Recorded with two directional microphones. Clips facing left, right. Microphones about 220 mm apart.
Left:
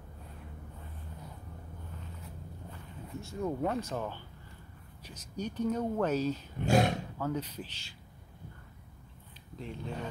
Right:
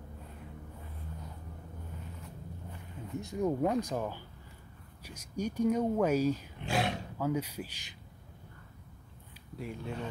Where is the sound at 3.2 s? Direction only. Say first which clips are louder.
Right 3 dB; 15° right (ahead or behind).